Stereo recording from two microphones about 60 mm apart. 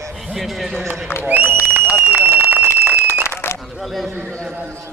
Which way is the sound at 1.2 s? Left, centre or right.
Right.